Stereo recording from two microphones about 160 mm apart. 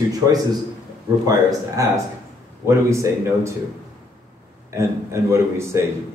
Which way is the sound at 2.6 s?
20° right (ahead or behind).